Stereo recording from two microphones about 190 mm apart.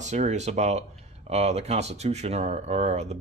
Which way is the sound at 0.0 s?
40° right (ahead or behind).